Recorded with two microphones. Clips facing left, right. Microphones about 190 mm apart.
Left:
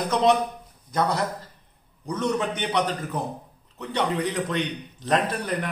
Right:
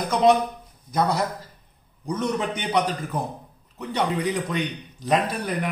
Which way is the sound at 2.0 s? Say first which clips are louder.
Even; 15° right (ahead or behind).